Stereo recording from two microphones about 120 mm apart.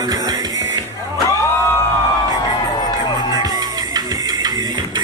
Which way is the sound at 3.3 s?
35° right (ahead or behind).